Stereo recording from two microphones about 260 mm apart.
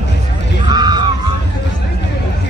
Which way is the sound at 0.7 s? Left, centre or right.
Centre.